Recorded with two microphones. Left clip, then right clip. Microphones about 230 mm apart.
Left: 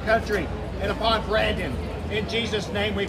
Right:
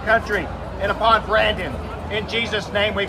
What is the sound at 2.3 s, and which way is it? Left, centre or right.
Speech, right.